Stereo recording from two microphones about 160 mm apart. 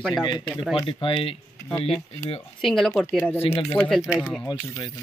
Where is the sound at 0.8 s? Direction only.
30° left (ahead or behind).